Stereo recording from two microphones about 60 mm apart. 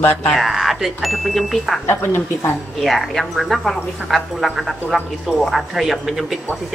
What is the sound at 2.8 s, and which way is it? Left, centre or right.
Speech, centre.